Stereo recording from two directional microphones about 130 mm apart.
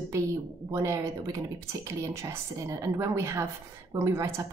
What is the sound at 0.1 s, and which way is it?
Speech, 20° right (ahead or behind).